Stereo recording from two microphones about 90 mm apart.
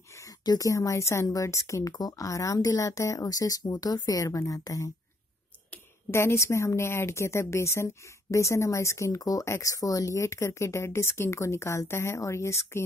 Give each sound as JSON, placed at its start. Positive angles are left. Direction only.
{"t": 0.1, "sound": "speech", "side_deg": 40}
{"t": 6.1, "sound": "speech", "side_deg": 30}